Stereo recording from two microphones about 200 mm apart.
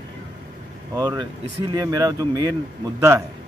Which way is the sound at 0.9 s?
20° right (ahead or behind).